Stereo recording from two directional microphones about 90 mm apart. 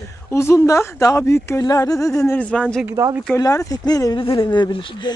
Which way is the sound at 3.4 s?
40° left (ahead or behind).